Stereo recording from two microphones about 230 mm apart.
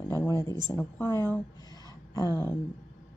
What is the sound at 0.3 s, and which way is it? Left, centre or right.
Speech, centre.